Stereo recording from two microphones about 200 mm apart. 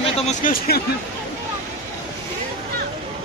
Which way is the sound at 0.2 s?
45° left (ahead or behind).